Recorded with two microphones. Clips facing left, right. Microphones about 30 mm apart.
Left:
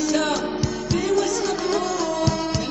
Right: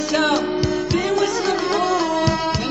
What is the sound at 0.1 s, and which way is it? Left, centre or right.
Music, right.